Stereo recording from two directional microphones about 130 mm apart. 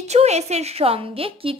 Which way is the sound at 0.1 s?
55° right (ahead or behind).